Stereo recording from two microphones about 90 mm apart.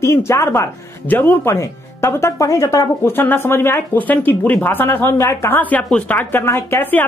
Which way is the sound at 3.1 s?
25° left (ahead or behind).